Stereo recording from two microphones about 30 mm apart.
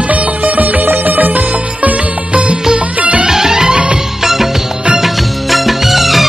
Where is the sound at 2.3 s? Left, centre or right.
Right.